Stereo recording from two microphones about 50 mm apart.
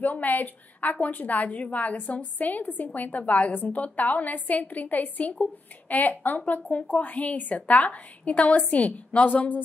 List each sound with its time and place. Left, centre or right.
0.0 s a woman's voice: left